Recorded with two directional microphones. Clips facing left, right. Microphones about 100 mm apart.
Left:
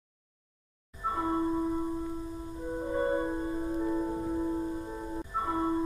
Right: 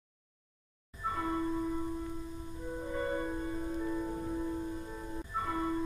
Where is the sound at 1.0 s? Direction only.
25° left (ahead or behind).